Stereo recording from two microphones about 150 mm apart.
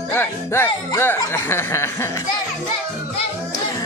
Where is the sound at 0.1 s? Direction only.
15° left (ahead or behind).